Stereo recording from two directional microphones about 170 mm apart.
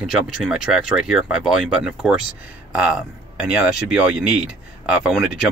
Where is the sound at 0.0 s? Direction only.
Centre (ahead or behind).